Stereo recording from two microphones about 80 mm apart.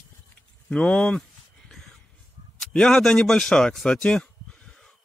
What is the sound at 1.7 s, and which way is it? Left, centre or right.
Music, centre.